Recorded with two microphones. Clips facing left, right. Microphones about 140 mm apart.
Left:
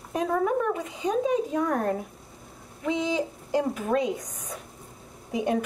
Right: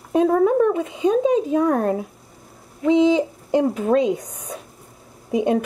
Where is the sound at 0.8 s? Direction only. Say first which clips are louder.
Right 8 dB; 20° right (ahead or behind).